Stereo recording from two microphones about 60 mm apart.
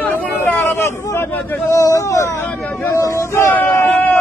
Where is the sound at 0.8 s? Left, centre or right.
Left.